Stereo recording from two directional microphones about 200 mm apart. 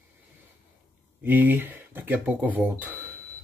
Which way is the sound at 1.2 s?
10° right (ahead or behind).